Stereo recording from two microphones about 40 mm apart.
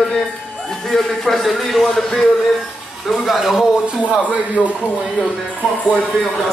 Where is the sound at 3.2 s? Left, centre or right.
Centre.